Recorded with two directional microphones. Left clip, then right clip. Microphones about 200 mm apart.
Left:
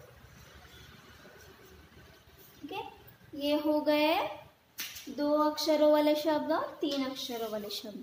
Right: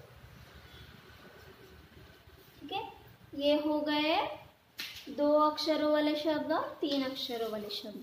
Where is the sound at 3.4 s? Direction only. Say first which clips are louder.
Even; 25° left (ahead or behind).